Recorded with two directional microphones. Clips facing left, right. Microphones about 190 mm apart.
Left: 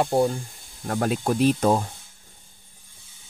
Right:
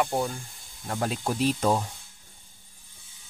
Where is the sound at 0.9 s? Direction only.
55° left (ahead or behind).